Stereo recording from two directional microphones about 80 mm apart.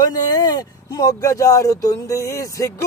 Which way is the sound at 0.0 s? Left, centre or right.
Left.